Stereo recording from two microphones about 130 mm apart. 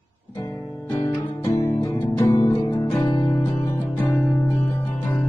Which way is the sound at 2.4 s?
25° left (ahead or behind).